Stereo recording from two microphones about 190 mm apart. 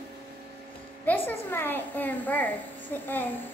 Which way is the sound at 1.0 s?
10° left (ahead or behind).